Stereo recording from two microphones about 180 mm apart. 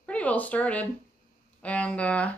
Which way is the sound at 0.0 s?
5° left (ahead or behind).